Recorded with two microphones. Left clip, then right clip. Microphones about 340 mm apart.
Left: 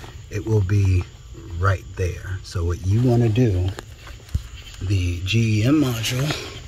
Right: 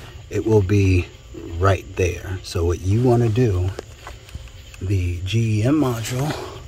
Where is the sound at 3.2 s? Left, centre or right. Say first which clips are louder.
Right 1 dB; right.